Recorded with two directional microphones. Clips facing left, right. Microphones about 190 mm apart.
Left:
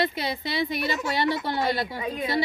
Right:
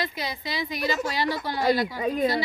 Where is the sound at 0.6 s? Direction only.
55° left (ahead or behind).